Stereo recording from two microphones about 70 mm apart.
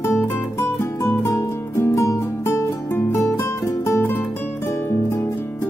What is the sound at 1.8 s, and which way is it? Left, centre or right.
Music, left.